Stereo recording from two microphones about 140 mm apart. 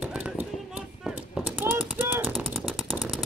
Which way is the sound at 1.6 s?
15° right (ahead or behind).